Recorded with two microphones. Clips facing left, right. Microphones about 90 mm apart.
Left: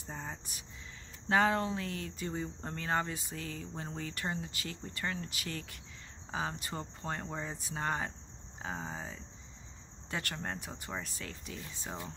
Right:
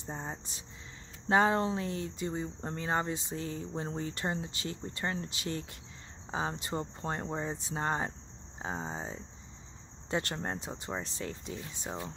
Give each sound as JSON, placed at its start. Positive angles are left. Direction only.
{"t": 0.0, "sound": "speech", "side_deg": -25}